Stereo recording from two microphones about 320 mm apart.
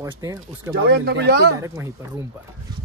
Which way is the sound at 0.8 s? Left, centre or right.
Right.